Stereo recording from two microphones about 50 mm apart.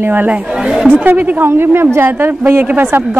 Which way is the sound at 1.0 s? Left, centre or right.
Right.